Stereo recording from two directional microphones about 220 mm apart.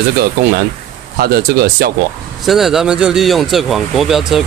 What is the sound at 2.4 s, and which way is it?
Speech, centre (ahead or behind).